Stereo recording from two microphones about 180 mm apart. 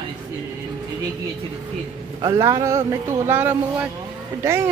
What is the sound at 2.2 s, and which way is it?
Speech, 15° right (ahead or behind).